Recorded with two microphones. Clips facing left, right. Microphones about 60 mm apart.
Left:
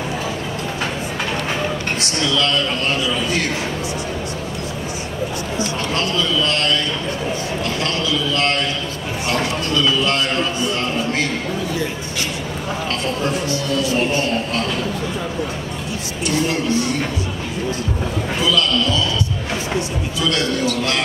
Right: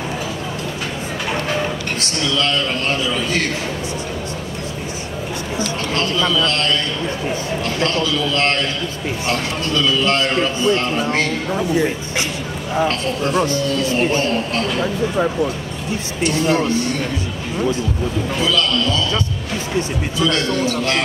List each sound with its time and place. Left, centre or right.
7.8 s a man's voice: right
10.0 s a man's voice: right
13.4 s a man's voice: right
16.4 s a man's voice: right
20.2 s a man's voice: right